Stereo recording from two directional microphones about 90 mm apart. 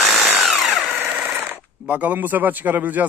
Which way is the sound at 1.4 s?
20° right (ahead or behind).